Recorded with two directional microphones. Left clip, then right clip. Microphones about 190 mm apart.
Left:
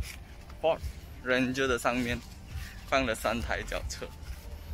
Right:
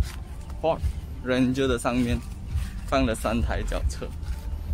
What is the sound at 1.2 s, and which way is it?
Speech, centre (ahead or behind).